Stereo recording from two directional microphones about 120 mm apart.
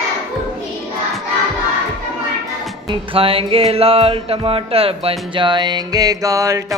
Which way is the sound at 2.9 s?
50° right (ahead or behind).